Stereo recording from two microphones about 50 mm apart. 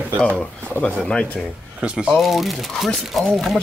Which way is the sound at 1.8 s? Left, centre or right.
Right.